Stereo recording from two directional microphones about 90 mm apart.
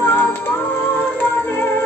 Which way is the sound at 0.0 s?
25° left (ahead or behind).